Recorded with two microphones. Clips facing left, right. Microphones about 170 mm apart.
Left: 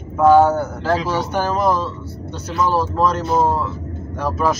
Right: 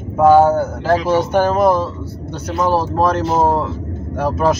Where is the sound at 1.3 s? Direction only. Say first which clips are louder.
Right 5 dB; 50° right (ahead or behind).